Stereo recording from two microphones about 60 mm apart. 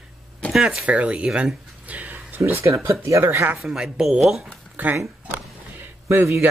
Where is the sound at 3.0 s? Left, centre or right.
Right.